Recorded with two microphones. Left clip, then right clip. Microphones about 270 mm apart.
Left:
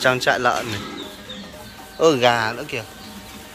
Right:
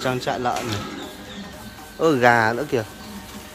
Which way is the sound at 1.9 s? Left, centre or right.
Centre.